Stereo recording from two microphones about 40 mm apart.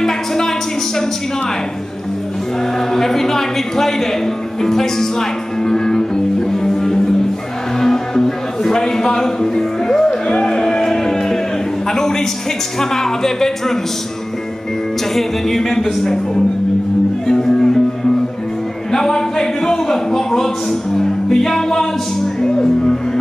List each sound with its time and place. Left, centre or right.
2.9 s a woman's voice: centre
6.5 s music: centre
11.9 s a sound: centre
12.9 s a woman's voice: centre
15.1 s a woman's voice: centre
17.3 s a woman's voice: centre
18.9 s a man's voice: centre